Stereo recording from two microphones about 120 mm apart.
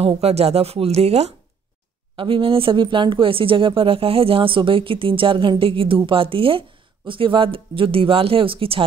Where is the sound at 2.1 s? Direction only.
45° right (ahead or behind).